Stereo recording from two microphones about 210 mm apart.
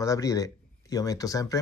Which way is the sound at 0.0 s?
15° left (ahead or behind).